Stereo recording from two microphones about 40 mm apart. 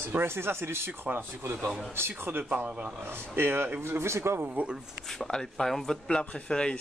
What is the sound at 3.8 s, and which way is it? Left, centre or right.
Speech, right.